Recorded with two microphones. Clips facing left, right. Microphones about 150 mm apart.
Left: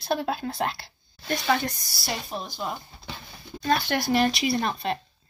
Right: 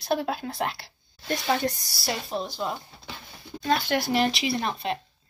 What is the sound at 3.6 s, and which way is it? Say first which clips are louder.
Speech: even; 15° right (ahead or behind).